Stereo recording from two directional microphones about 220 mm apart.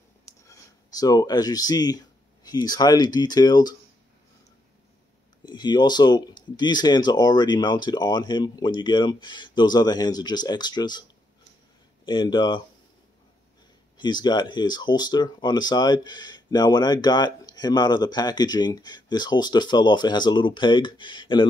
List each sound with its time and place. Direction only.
0.2 s speech: 15° left (ahead or behind)
5.4 s speech: 20° left (ahead or behind)
13.9 s speech: 20° left (ahead or behind)